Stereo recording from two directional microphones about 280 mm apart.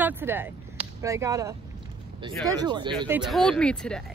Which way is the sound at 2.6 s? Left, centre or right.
Centre.